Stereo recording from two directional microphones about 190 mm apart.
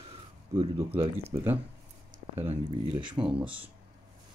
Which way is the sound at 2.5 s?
30° right (ahead or behind).